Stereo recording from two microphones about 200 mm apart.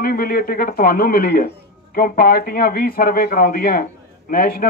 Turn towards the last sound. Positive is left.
turn(degrees=50)  # may be behind; listen again after turning